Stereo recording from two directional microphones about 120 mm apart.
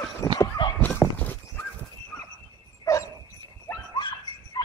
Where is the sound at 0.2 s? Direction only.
30° left (ahead or behind).